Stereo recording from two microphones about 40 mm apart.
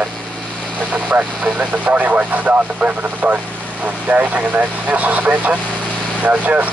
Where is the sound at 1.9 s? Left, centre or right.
Right.